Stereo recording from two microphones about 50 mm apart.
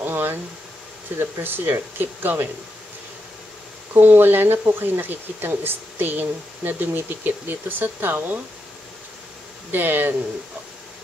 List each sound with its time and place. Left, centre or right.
0.0 s a sound: right
1.4 s speech: right
3.9 s speech: right
9.7 s speech: right